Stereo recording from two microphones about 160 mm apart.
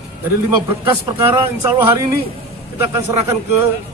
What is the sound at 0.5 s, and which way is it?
A man's voice, 20° right (ahead or behind).